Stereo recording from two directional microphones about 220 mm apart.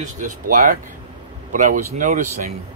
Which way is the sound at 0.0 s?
35° right (ahead or behind).